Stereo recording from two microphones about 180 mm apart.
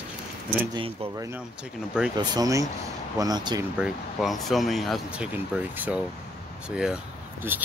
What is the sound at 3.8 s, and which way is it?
Speech, centre (ahead or behind).